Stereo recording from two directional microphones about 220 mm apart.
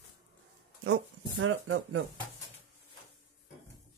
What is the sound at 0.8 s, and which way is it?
Speech, 65° right (ahead or behind).